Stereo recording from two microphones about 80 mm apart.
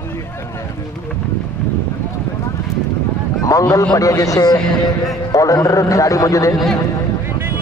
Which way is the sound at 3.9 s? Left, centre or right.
Left.